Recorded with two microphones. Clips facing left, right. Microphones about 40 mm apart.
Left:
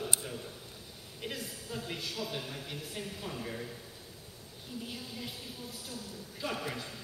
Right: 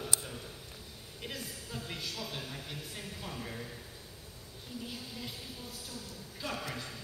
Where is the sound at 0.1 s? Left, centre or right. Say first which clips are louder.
Left 1 dB; left.